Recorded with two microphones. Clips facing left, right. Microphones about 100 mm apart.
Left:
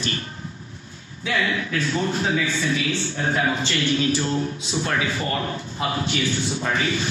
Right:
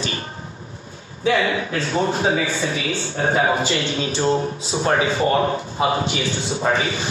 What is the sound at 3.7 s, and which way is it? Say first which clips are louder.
Speech: left 1 dB; 25° right (ahead or behind).